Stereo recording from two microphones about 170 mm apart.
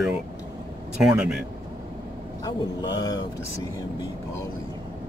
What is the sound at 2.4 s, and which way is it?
Speech, 25° left (ahead or behind).